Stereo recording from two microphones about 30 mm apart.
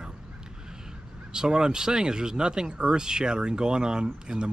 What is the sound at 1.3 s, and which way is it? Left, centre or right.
Speech, right.